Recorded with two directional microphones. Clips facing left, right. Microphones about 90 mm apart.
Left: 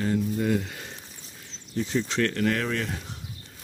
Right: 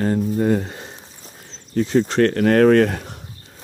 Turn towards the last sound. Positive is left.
turn(degrees=-60)  # may be behind; listen again after turning